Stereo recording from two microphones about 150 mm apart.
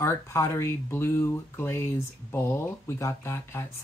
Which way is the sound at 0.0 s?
20° left (ahead or behind).